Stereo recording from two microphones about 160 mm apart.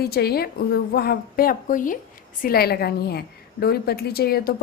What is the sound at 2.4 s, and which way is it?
A woman's voice, 75° left (ahead or behind).